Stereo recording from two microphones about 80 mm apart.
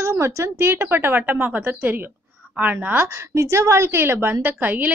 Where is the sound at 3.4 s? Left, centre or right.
Right.